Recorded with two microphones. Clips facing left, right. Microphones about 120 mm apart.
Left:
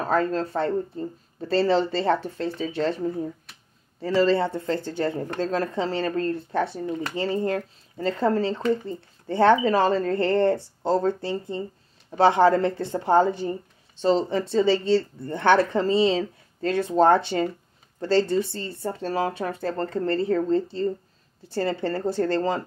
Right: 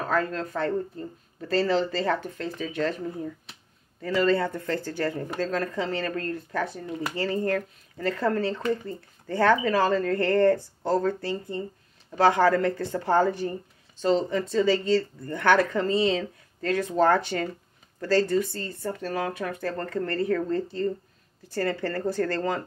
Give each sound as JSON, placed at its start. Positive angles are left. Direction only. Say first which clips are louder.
{"t": 0.0, "sound": "speech", "louder": "left 4 dB", "side_deg": 30}